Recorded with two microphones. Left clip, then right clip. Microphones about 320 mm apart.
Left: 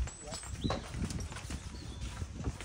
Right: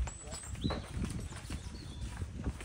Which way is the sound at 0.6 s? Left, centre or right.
Centre.